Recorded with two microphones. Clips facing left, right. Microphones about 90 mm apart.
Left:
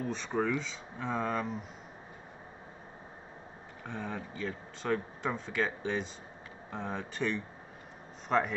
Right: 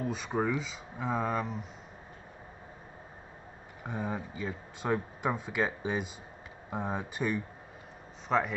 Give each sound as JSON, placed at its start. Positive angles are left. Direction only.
{"t": 0.0, "sound": "speech", "side_deg": -5}
{"t": 3.8, "sound": "a man's voice", "side_deg": -10}